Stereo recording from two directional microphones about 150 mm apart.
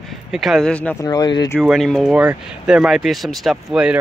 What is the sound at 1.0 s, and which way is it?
Speech, 25° left (ahead or behind).